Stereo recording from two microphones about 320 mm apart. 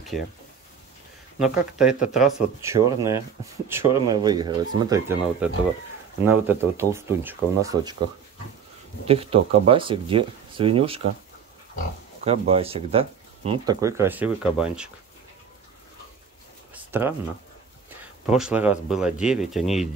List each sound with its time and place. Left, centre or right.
1.4 s speech: centre
9.0 s speech: centre
12.3 s speech: centre
16.7 s a sound: centre
18.2 s speech: centre